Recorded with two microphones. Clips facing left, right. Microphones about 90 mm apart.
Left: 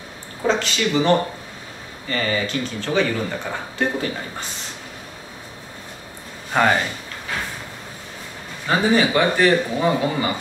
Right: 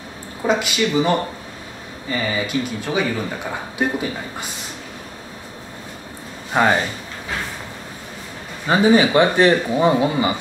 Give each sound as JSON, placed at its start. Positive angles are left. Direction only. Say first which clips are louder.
{"t": 0.5, "sound": "speech", "louder": "right 1 dB", "side_deg": -10}
{"t": 6.5, "sound": "speech", "louder": "right 1 dB", "side_deg": -10}
{"t": 8.6, "sound": "a man's voice", "louder": "right 4 dB", "side_deg": -20}